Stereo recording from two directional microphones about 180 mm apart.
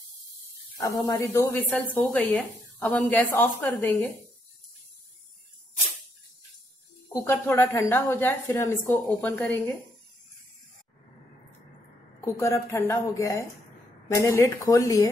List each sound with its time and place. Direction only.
0.7 s a woman's voice: 15° left (ahead or behind)
7.1 s a woman's voice: 10° left (ahead or behind)
12.2 s a woman's voice: 15° left (ahead or behind)